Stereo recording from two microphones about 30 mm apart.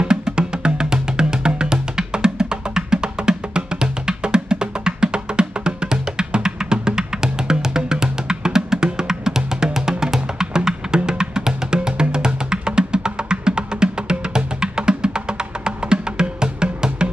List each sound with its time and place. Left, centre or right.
0.0 s music: right